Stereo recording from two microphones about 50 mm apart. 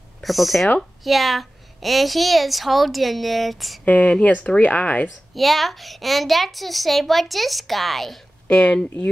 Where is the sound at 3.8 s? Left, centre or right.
Left.